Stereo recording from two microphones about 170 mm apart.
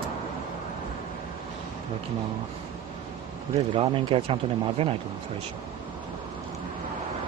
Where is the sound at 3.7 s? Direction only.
30° right (ahead or behind).